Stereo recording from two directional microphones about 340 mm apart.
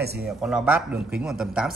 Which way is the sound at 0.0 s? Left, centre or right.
Right.